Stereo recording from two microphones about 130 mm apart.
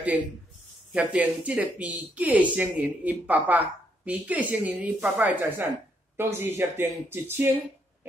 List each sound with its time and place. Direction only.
0.9 s speech: 10° right (ahead or behind)